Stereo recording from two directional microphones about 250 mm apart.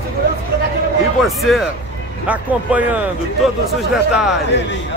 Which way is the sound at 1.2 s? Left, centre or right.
Centre.